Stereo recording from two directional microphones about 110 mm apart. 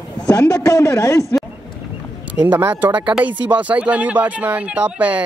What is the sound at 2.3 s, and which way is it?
Speech, 15° right (ahead or behind).